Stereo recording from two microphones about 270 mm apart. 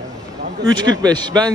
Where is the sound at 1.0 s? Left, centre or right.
Centre.